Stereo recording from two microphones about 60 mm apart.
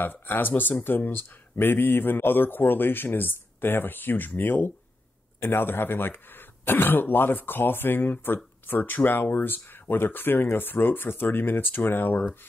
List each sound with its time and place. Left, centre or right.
0.0 s speech: left